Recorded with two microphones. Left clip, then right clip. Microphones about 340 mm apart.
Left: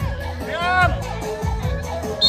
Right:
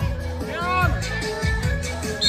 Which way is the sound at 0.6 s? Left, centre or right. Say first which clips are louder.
Left 5 dB; left.